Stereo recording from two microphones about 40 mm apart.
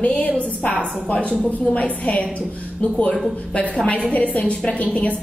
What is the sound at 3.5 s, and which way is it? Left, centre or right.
A woman's voice, left.